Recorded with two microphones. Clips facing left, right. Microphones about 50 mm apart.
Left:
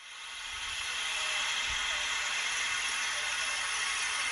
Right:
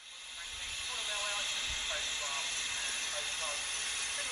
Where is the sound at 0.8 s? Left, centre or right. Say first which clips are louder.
Left 3 dB; left.